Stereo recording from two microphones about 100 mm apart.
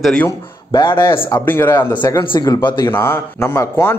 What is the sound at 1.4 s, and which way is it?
Speech, 20° left (ahead or behind).